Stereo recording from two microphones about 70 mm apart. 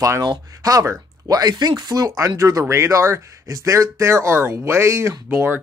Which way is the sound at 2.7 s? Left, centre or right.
Right.